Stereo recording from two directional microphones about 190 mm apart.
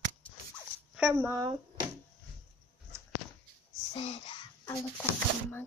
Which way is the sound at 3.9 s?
30° left (ahead or behind).